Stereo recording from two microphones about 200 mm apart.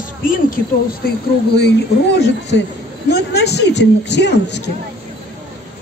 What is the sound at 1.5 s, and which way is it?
A woman's voice, 55° left (ahead or behind).